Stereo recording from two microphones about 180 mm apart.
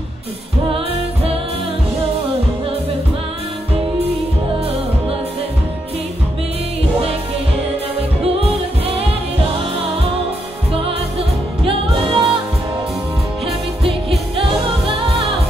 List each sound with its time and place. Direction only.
0.7 s music: 30° right (ahead or behind)
8.2 s music: 35° right (ahead or behind)
10.7 s music: 30° right (ahead or behind)